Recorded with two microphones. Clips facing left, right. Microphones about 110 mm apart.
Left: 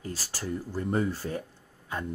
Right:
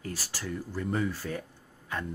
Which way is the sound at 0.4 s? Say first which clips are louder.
Left 3 dB; 35° left (ahead or behind).